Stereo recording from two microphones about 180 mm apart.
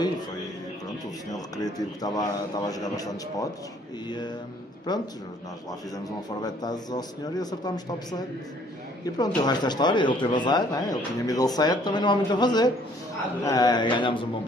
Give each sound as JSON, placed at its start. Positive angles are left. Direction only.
{"t": 1.3, "sound": "speech", "side_deg": 20}
{"t": 4.9, "sound": "speech", "side_deg": 25}